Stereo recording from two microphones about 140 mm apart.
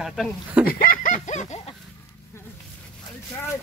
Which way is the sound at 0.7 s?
90° left.